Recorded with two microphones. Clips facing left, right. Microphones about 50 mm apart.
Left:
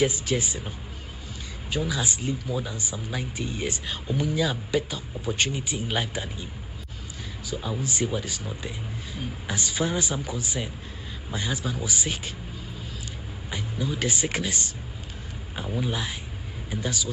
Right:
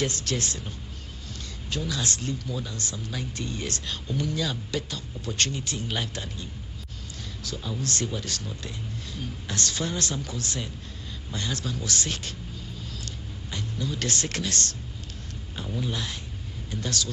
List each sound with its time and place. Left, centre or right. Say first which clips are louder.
0.0 s speech: left 4 dB; centre
7.4 s speech: left 2 dB; centre
13.5 s speech: left 2 dB; centre